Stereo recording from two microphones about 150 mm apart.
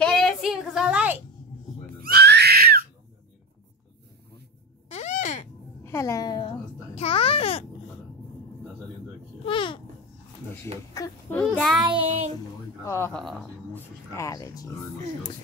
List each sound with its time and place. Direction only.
0.0 s a sound: 5° left (ahead or behind)
2.0 s screaming: 90° right
4.8 s crow: 50° left (ahead or behind)
5.9 s a sound: 20° left (ahead or behind)
7.0 s babbling: 40° left (ahead or behind)
9.4 s babbling: 35° left (ahead or behind)
11.0 s speech: 25° left (ahead or behind)
11.5 s speech: centre (ahead or behind)
11.8 s child singing: 35° right (ahead or behind)
12.8 s speech: 20° left (ahead or behind)
13.1 s speech: 5° left (ahead or behind)
13.7 s speech: 20° left (ahead or behind)